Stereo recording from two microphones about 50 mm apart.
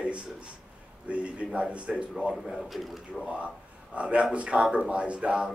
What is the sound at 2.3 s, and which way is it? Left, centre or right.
Speech, centre.